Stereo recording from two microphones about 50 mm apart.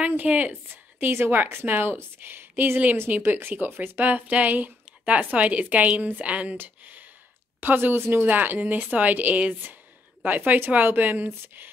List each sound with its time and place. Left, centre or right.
0.1 s a woman's voice: right
6.5 s speech: right
8.2 s speech: right